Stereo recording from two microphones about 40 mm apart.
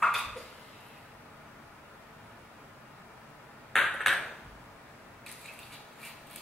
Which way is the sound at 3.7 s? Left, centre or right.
Centre.